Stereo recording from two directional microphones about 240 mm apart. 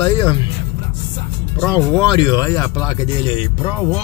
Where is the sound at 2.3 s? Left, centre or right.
Centre.